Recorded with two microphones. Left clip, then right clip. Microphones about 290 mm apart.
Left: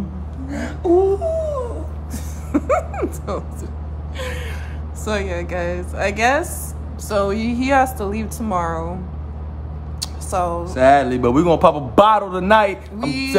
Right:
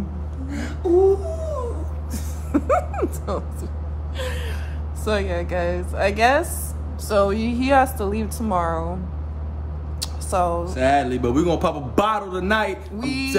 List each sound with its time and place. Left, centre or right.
0.5 s whimper: centre
2.1 s music: centre
4.2 s gasp: centre
5.0 s a woman's voice: centre
9.9 s a sound: centre
10.6 s a man's voice: left
12.9 s a woman's voice: centre